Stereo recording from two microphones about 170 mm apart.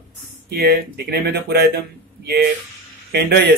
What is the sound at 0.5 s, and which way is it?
Speech, 70° right (ahead or behind).